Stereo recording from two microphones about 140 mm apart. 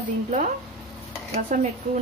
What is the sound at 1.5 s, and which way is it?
Speech, 70° right (ahead or behind).